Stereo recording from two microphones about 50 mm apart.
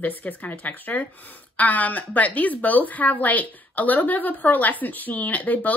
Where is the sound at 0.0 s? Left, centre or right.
Left.